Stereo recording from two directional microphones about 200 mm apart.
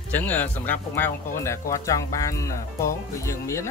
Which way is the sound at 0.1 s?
10° left (ahead or behind).